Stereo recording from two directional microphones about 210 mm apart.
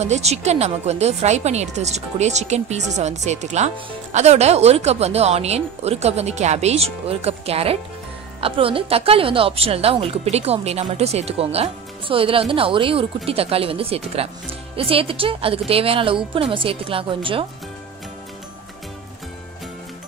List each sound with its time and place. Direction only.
0.0 s a woman's voice: 30° right (ahead or behind)